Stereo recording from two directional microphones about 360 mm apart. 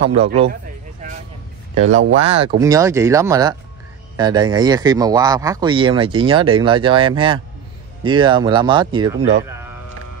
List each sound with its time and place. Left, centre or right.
0.2 s speech: centre
2.2 s speech: centre